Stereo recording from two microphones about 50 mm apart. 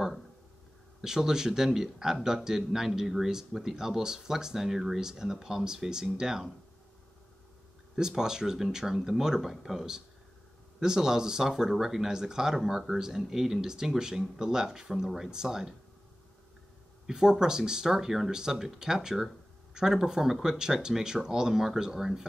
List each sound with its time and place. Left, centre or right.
1.0 s a man's voice: centre
7.9 s a man's voice: centre
17.0 s a man's voice: centre